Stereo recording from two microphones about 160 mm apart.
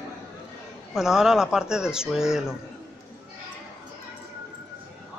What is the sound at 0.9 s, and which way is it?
Speech, 5° right (ahead or behind).